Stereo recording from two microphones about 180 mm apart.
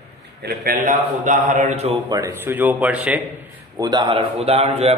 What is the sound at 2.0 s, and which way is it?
Speech, 20° right (ahead or behind).